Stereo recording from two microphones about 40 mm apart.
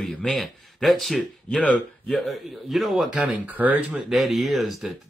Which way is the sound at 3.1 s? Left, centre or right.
Right.